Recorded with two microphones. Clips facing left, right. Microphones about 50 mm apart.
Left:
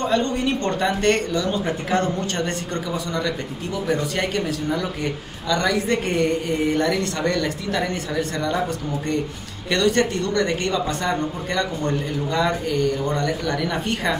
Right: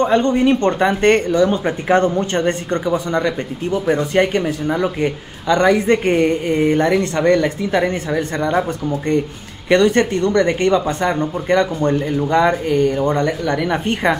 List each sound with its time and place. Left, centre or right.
0.0 s speech: right